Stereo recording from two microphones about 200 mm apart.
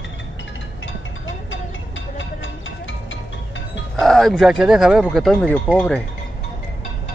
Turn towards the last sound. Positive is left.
turn(degrees=5)  # may be behind; listen again after turning